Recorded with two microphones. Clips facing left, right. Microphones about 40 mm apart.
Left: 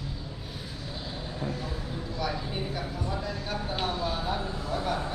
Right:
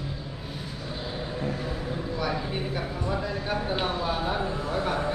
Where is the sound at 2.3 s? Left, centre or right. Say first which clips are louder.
Right 3 dB; centre.